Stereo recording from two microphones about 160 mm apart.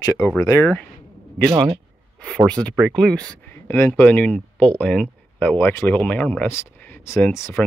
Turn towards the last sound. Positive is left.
turn(degrees=15)  # may be behind; listen again after turning